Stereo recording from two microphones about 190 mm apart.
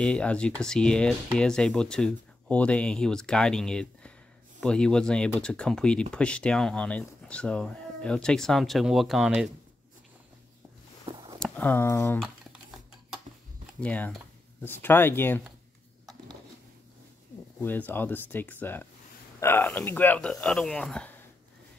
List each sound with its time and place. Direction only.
0.0 s speech: 5° left (ahead or behind)
11.1 s a sound: 25° right (ahead or behind)
11.3 s speech: 5° left (ahead or behind)
13.7 s speech: 5° left (ahead or behind)
17.6 s speech: 10° left (ahead or behind)